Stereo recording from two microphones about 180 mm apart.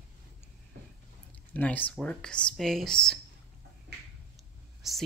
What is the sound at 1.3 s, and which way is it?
Speech, 10° left (ahead or behind).